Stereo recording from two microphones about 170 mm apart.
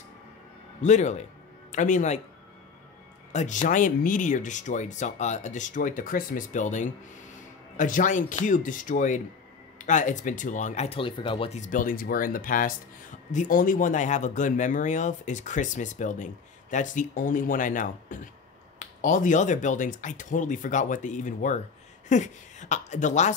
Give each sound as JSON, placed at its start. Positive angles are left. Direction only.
{"t": 0.8, "sound": "speech", "side_deg": 45}
{"t": 3.3, "sound": "speech", "side_deg": 45}